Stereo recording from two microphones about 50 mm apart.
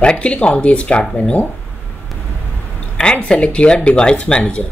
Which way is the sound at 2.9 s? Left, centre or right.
Centre.